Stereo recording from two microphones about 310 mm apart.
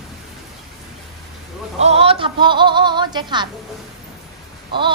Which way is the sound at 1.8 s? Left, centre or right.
Centre.